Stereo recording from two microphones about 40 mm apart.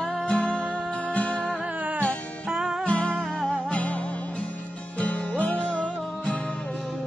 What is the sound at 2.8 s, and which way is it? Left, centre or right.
Music, left.